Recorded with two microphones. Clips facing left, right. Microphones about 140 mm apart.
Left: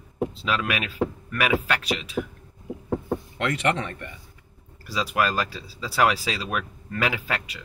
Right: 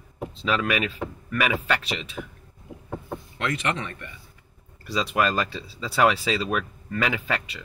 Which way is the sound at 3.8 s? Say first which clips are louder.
Left 3 dB; 40° left (ahead or behind).